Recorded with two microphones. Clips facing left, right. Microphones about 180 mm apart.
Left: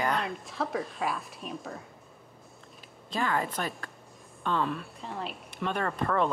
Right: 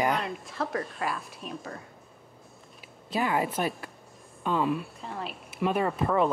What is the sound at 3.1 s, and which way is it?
Speech, 10° right (ahead or behind).